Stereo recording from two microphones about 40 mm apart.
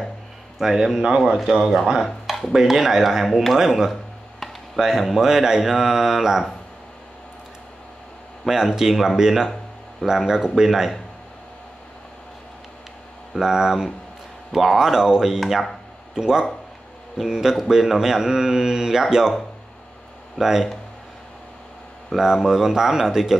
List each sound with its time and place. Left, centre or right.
0.7 s speech: centre
1.0 s speech: right
8.7 s speech: centre
13.4 s speech: centre
14.8 s speech: centre
20.3 s speech: centre
22.1 s speech: centre